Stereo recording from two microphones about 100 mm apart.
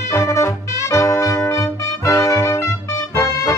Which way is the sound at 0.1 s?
30° left (ahead or behind).